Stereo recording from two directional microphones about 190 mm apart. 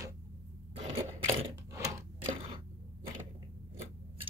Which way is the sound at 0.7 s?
30° right (ahead or behind).